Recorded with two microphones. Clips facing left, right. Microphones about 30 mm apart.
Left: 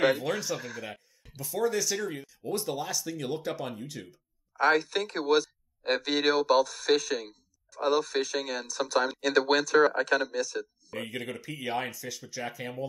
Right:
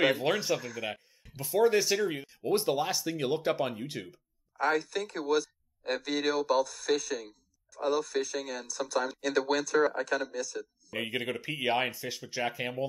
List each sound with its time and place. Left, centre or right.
0.2 s speech: right
4.6 s speech: left
11.0 s speech: right
11.4 s speech: right